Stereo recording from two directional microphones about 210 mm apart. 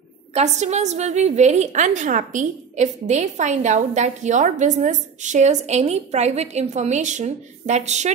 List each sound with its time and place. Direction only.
0.3 s a woman's voice: 30° right (ahead or behind)